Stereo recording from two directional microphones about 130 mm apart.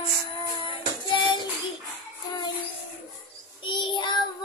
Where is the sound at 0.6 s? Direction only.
40° left (ahead or behind).